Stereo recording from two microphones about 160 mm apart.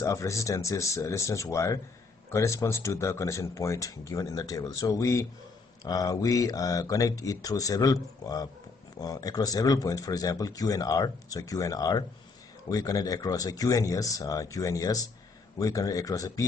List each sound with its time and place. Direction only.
0.0 s speech: 20° left (ahead or behind)